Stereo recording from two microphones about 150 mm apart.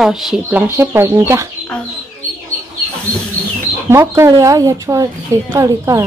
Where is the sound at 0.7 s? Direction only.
15° right (ahead or behind).